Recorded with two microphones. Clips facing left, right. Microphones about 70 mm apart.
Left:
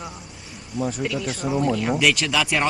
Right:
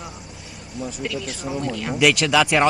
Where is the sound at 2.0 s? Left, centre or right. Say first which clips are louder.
Right 3 dB; right.